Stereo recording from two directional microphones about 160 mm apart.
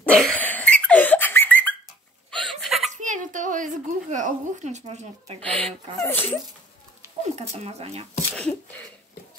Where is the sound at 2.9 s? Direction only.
50° right (ahead or behind).